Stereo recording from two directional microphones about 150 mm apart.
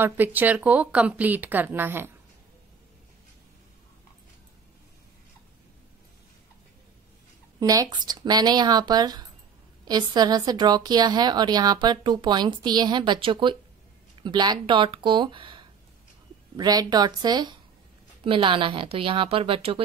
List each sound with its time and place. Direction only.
0.0 s a woman's voice: 10° right (ahead or behind)
7.6 s a woman's voice: 25° right (ahead or behind)